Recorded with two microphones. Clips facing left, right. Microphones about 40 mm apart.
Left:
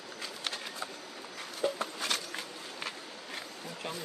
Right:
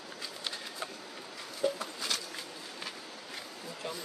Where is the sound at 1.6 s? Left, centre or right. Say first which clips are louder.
Even; left.